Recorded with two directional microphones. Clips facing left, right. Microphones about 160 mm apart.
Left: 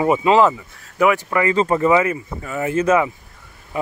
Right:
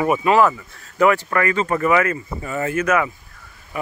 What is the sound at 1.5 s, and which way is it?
Speech, 25° left (ahead or behind).